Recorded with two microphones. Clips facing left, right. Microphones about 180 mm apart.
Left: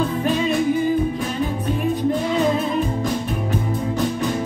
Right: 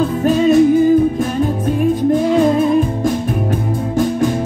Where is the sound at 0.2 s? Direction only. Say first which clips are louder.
Right 8 dB; 45° right (ahead or behind).